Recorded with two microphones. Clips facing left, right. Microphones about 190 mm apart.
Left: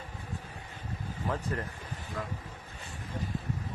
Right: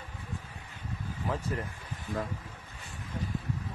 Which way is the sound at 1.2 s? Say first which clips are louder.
Even; 5° right (ahead or behind).